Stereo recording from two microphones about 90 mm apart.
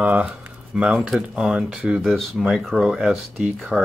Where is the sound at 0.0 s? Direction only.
15° right (ahead or behind).